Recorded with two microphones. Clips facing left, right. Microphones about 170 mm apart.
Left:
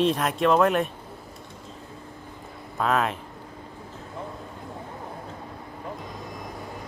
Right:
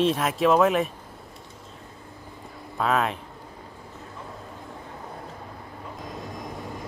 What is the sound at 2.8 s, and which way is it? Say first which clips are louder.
Speech: even; centre (ahead or behind).